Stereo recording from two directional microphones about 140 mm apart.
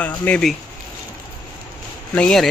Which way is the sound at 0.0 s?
10° left (ahead or behind).